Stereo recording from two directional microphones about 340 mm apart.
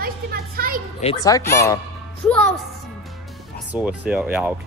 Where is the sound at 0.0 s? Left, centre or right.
Right.